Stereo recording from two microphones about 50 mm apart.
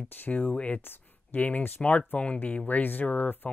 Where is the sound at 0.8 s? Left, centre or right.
Left.